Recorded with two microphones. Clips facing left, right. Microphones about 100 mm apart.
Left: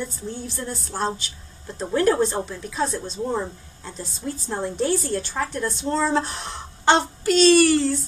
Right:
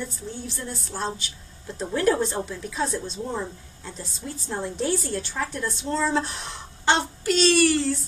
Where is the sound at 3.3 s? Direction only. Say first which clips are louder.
Left 4 dB; 30° left (ahead or behind).